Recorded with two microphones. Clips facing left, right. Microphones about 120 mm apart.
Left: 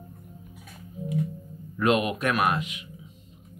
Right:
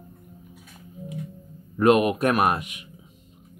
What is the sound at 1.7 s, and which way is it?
Speech, 45° right (ahead or behind).